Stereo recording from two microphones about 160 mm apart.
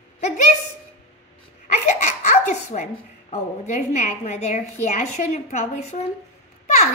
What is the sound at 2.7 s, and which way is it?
A woman's voice, 50° left (ahead or behind).